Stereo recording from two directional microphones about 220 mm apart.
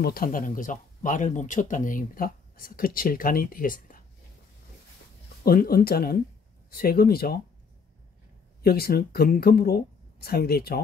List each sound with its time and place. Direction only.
0.0 s speech: 40° left (ahead or behind)
5.4 s speech: 40° left (ahead or behind)
8.6 s speech: 45° left (ahead or behind)